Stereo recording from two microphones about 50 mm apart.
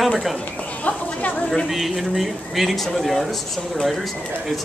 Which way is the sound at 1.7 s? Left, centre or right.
Centre.